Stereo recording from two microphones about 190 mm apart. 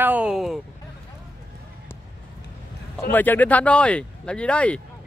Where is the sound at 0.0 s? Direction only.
5° right (ahead or behind).